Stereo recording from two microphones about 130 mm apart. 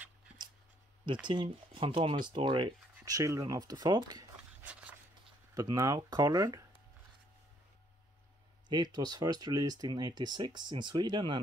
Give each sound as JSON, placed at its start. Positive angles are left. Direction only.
{"t": 1.2, "sound": "speech", "side_deg": -40}
{"t": 4.6, "sound": "a sound", "side_deg": -10}
{"t": 5.5, "sound": "speech", "side_deg": -30}
{"t": 8.6, "sound": "speech", "side_deg": -35}